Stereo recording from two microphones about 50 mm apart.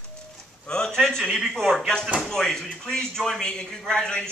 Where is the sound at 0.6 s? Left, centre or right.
Centre.